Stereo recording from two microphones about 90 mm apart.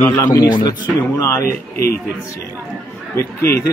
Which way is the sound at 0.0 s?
25° left (ahead or behind).